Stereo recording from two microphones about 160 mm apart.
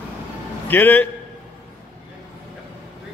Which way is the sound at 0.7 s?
10° left (ahead or behind).